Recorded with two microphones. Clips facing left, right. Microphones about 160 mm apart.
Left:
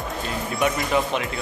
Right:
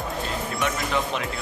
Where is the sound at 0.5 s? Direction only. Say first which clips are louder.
Left 5 dB; 5° left (ahead or behind).